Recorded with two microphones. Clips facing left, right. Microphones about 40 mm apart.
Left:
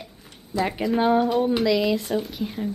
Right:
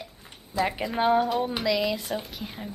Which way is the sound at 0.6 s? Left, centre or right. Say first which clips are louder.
Left 3 dB; centre.